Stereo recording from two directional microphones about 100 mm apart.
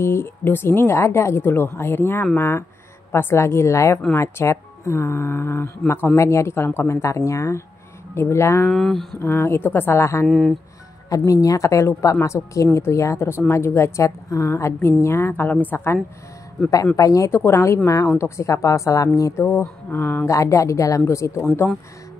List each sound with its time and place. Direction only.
0.0 s speech: 25° left (ahead or behind)
8.6 s speech: 5° left (ahead or behind)
9.2 s speech: 25° left (ahead or behind)
10.2 s speech: 5° left (ahead or behind)
11.1 s a woman's voice: 35° left (ahead or behind)
16.9 s a woman's voice: 35° left (ahead or behind)
19.4 s speech: 20° left (ahead or behind)